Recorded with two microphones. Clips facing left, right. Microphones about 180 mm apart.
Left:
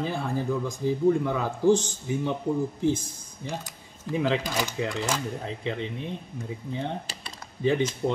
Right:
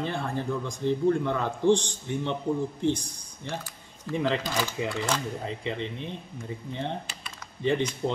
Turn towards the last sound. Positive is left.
turn(degrees=5)  # may be behind; listen again after turning